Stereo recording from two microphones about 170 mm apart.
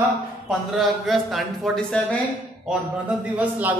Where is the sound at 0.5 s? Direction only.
Centre (ahead or behind).